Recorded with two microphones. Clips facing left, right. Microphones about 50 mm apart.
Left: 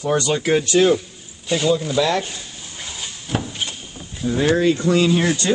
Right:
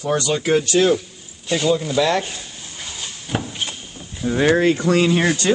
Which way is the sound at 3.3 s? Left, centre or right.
Centre.